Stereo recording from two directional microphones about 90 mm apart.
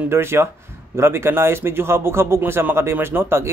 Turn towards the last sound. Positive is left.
turn(degrees=-30)  # may be behind; listen again after turning